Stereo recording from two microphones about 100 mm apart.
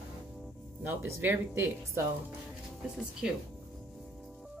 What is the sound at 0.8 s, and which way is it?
Speech, 25° right (ahead or behind).